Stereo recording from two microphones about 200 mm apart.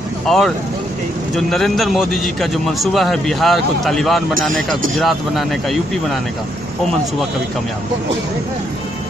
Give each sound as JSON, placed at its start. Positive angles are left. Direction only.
{"t": 0.3, "sound": "a man's voice", "side_deg": 0}